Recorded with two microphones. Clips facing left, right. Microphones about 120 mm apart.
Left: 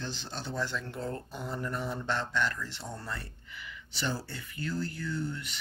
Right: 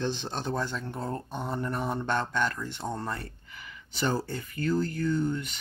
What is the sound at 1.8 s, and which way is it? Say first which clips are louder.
Speech: right 5 dB; 50° right (ahead or behind).